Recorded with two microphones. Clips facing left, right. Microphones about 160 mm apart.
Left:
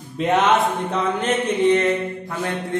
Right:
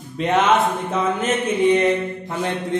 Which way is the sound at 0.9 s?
10° right (ahead or behind).